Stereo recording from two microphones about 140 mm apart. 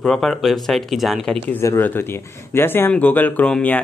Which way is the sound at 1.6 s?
15° left (ahead or behind).